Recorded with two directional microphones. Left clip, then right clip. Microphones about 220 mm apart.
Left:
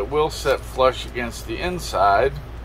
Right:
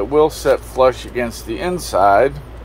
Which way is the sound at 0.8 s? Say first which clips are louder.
Right 4 dB; 90° right.